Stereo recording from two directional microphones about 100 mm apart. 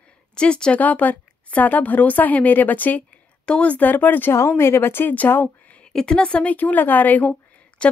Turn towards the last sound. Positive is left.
turn(degrees=10)  # may be behind; listen again after turning